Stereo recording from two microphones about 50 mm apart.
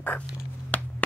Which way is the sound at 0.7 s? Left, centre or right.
Left.